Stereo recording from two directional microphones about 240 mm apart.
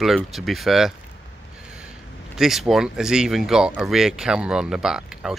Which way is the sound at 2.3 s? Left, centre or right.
Centre.